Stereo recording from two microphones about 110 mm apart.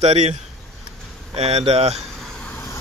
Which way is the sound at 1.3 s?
70° right (ahead or behind).